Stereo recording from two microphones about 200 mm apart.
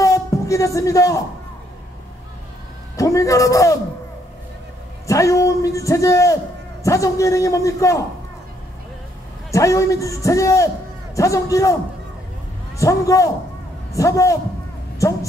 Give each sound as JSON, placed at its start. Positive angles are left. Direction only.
{"t": 0.0, "sound": "music", "side_deg": 15}
{"t": 3.0, "sound": "a man's voice", "side_deg": 15}
{"t": 5.0, "sound": "a man's voice", "side_deg": 15}
{"t": 9.5, "sound": "a man's voice", "side_deg": 15}
{"t": 12.7, "sound": "a man's voice", "side_deg": 15}